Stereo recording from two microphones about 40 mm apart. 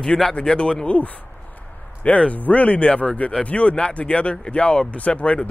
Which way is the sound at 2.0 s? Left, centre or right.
Left.